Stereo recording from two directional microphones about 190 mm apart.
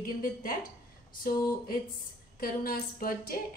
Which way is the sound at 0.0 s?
45° left (ahead or behind).